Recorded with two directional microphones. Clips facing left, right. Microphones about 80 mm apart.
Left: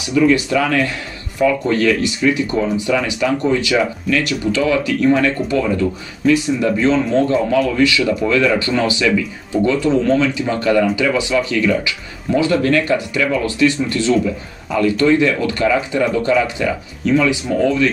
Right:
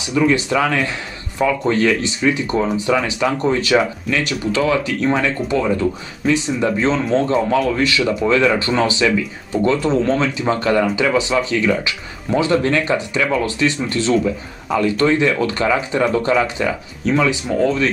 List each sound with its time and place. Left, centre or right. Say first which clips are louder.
0.0 s speech: left 2 dB; right
17.5 s speech: even; centre